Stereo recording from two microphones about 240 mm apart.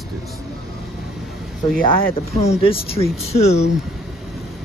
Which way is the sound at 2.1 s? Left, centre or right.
Left.